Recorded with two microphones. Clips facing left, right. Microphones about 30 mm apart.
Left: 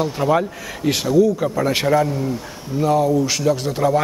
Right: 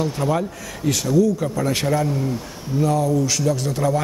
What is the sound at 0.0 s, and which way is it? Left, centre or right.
Speech, centre.